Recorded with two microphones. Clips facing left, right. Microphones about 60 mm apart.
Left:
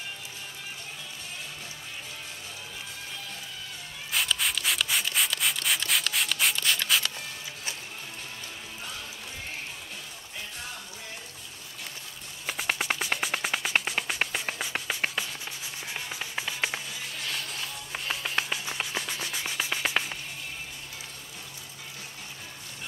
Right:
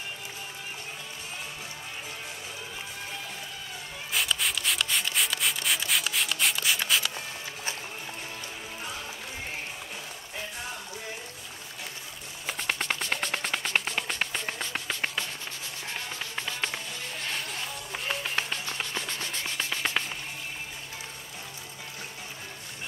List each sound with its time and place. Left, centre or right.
4.1 s rub: centre
12.4 s music: centre
17.5 s music: centre